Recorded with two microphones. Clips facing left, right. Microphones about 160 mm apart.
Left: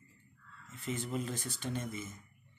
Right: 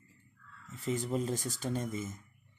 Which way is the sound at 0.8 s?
40° right (ahead or behind).